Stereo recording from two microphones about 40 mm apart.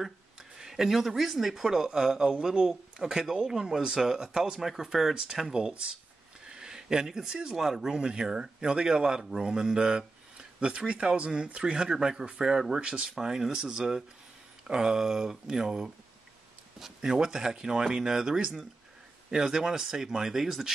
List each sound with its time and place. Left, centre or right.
0.0 s speech: centre
12.8 s speech: right
13.1 s speech: centre